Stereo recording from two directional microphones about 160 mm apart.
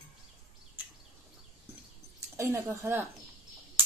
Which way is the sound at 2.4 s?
15° right (ahead or behind).